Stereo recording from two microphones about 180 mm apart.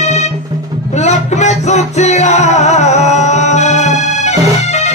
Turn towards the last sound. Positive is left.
turn(degrees=40)  # may be behind; listen again after turning